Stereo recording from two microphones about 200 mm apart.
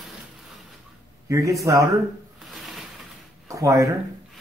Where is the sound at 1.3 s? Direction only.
15° right (ahead or behind).